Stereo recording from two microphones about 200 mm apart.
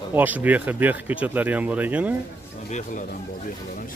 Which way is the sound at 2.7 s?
35° left (ahead or behind).